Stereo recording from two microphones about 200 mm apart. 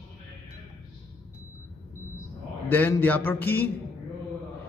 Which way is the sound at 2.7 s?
10° left (ahead or behind).